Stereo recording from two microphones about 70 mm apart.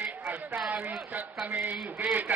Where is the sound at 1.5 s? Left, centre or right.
Right.